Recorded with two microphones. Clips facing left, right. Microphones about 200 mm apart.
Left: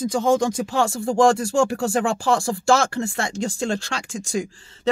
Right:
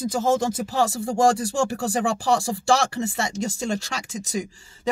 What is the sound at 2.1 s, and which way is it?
Speech, centre (ahead or behind).